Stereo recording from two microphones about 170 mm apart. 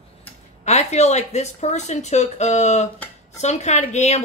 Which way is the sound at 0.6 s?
40° left (ahead or behind).